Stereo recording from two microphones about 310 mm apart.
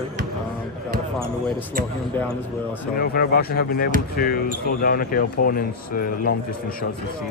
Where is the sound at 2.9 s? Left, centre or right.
Left.